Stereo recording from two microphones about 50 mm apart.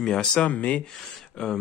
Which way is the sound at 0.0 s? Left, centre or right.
Centre.